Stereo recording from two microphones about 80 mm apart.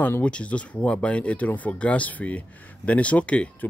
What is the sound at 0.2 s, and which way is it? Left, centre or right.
Speech, centre.